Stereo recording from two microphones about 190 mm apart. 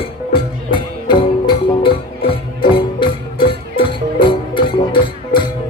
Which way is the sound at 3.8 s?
25° left (ahead or behind).